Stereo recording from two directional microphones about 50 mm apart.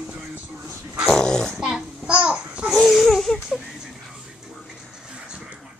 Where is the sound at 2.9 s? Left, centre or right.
Centre.